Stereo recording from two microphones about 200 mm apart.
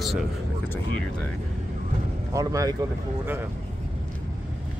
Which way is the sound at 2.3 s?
15° right (ahead or behind).